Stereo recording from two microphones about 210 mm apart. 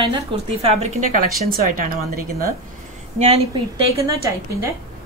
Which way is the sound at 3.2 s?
30° right (ahead or behind).